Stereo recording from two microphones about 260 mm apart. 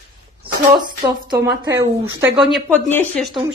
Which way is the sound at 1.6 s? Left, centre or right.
Centre.